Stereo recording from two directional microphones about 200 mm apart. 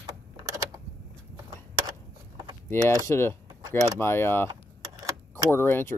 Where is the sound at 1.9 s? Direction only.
25° right (ahead or behind).